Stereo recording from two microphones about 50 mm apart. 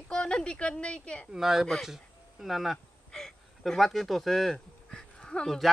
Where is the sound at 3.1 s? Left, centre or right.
Centre.